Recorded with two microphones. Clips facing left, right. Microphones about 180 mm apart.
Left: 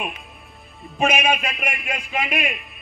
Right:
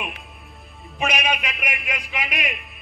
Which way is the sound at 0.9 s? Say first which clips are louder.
Left 4 dB; 50° left (ahead or behind).